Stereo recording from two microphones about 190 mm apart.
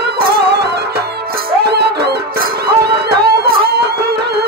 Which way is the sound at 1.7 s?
60° right (ahead or behind).